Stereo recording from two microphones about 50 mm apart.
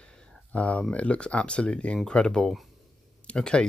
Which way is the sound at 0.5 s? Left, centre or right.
Left.